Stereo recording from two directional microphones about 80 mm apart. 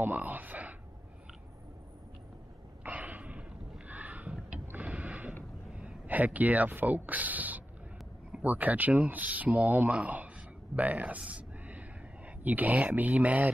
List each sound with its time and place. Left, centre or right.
0.0 s speech: right
2.8 s a sound: centre
5.8 s speech: centre